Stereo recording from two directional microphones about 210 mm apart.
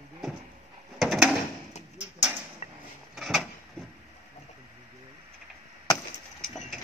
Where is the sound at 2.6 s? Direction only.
30° left (ahead or behind).